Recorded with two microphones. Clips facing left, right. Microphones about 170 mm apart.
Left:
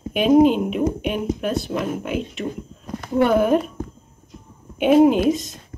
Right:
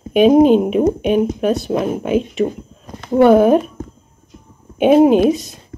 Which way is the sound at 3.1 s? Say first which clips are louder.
Right 7 dB; 35° right (ahead or behind).